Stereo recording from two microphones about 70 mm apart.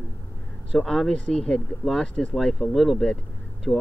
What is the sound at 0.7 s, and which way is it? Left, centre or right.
Speech, centre.